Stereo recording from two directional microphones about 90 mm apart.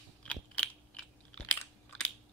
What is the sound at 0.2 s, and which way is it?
Chewing, 15° left (ahead or behind).